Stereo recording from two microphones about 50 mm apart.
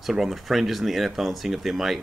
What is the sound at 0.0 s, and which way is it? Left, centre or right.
Speech, centre.